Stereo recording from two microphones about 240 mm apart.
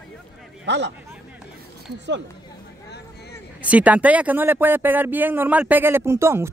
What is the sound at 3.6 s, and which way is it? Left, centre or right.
Speech, centre.